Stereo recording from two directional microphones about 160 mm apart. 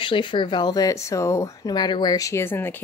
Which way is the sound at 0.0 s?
30° left (ahead or behind).